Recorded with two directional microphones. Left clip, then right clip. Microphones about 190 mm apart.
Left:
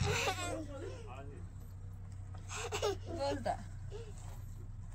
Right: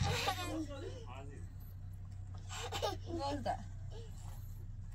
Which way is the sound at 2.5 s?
10° left (ahead or behind).